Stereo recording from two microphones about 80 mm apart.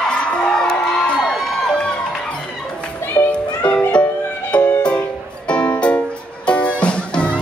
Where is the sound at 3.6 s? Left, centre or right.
Centre.